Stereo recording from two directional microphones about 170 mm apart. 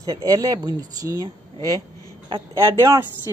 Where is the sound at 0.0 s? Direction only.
20° right (ahead or behind).